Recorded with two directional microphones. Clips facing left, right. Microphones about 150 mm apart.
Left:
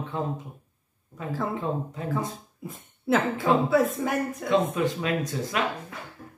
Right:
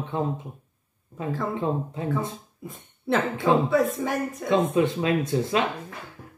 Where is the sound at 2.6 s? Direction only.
Centre (ahead or behind).